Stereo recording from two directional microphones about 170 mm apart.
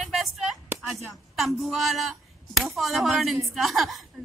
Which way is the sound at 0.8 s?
Centre (ahead or behind).